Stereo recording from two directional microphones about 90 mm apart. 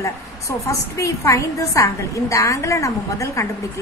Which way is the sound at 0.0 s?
35° left (ahead or behind).